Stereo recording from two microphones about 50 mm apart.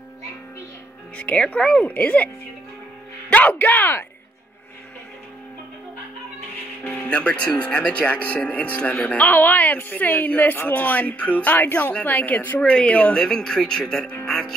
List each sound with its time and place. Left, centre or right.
1.1 s speech: left
1.9 s a woman's voice: left
6.8 s speech: left
7.1 s a woman's voice: left
12.5 s speech: centre
13.2 s speech: centre